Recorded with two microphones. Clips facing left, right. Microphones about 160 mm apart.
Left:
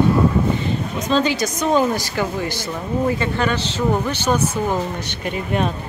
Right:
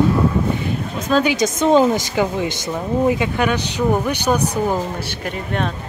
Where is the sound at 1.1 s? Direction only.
10° right (ahead or behind).